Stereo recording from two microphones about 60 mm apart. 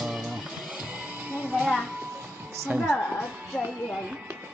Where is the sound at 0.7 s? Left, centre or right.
Centre.